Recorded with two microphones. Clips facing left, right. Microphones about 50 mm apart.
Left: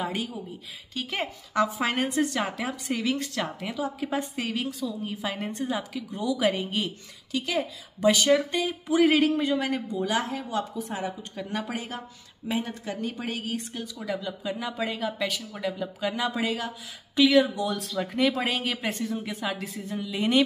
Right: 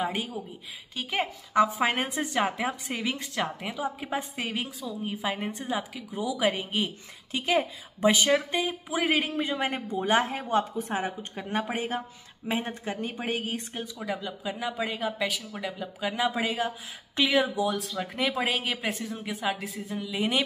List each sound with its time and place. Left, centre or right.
0.0 s speech: centre
7.3 s speech: right; by 9.3 s centre
9.4 s speech: right; by 20.4 s centre